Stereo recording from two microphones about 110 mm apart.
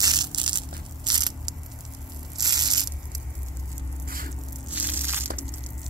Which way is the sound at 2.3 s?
40° right (ahead or behind).